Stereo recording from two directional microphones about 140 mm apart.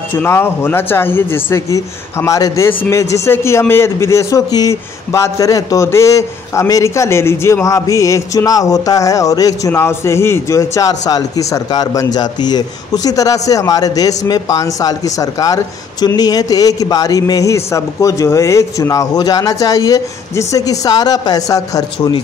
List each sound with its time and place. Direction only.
0.1 s speech: 15° left (ahead or behind)